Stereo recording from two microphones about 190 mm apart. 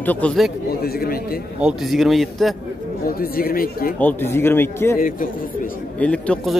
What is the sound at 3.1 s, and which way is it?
Speech, 50° left (ahead or behind).